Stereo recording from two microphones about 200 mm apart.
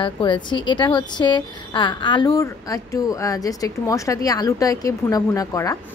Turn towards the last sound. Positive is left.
turn(degrees=15)  # may be behind; listen again after turning